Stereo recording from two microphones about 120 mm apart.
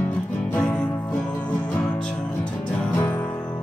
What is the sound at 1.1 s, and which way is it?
Music, 15° left (ahead or behind).